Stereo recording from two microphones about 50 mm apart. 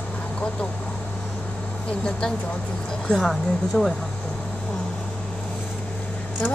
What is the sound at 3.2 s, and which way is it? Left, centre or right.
Speech, centre.